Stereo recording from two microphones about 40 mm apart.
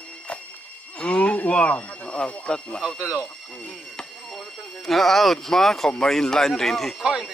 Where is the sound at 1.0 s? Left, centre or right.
Left.